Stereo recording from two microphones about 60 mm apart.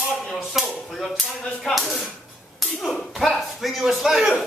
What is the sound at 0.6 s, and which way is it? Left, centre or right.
Speech, centre.